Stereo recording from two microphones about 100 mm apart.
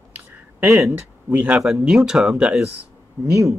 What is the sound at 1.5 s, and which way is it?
Speech, 5° right (ahead or behind).